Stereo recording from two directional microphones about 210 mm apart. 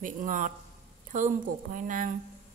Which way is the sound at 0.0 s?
40° right (ahead or behind).